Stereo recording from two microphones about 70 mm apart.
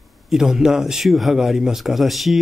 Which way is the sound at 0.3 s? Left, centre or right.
Centre.